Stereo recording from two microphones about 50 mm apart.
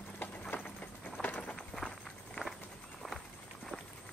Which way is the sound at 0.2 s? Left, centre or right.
Left.